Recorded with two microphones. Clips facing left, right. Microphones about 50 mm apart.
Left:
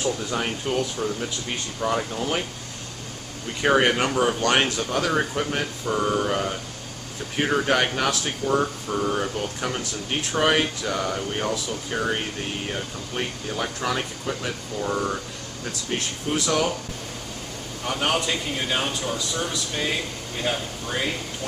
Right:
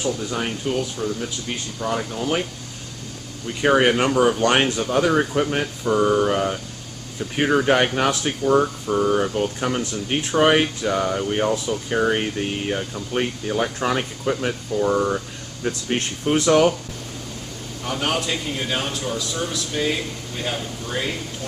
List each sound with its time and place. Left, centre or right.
0.0 s a man's voice: centre
3.6 s a man's voice: centre; by 14.5 s right
14.8 s speech: centre
16.3 s speech: right
17.8 s a man's voice: centre